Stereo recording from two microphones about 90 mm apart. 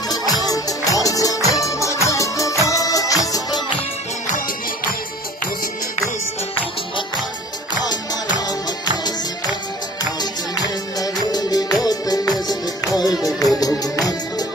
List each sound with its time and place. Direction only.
0.1 s music: 45° left (ahead or behind)
7.8 s music: 50° left (ahead or behind)
10.5 s music: 50° left (ahead or behind)